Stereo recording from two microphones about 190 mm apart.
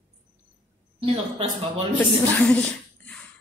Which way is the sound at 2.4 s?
5° left (ahead or behind).